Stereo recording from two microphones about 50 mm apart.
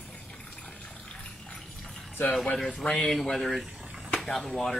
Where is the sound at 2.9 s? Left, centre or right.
Centre.